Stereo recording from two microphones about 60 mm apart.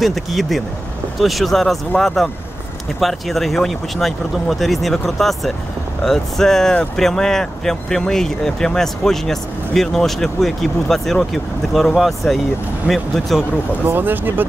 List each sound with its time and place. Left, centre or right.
0.0 s speech: centre
13.8 s speech: right